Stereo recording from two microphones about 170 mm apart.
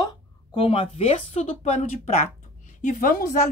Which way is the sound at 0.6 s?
35° left (ahead or behind).